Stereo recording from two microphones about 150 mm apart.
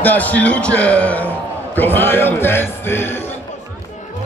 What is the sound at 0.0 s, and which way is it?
Speech, 10° left (ahead or behind).